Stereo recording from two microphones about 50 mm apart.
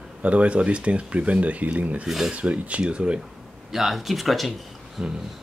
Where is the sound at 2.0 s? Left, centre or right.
Centre.